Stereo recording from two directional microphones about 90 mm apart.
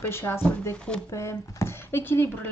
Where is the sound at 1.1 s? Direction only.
30° left (ahead or behind).